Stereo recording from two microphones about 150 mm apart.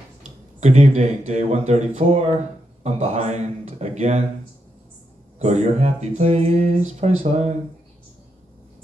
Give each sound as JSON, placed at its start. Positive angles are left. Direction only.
{"t": 0.6, "sound": "speech", "side_deg": -45}
{"t": 5.4, "sound": "speech", "side_deg": -50}